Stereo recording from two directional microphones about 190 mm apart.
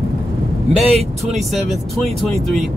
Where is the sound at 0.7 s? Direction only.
35° right (ahead or behind).